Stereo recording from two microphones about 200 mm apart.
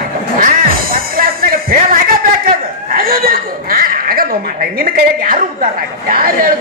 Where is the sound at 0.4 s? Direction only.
45° right (ahead or behind).